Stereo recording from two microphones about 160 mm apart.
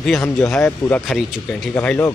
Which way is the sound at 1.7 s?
10° left (ahead or behind).